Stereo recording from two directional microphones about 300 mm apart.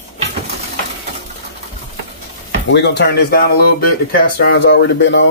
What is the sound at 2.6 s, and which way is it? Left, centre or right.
Speech, left.